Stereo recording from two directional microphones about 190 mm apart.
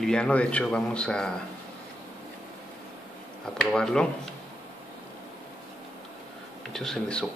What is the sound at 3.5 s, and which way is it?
Speech, 5° left (ahead or behind).